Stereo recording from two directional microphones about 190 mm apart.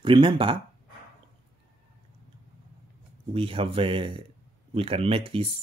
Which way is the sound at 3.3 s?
30° right (ahead or behind).